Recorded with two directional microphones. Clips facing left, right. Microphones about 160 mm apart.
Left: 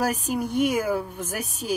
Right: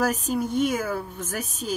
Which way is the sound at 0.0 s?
10° left (ahead or behind).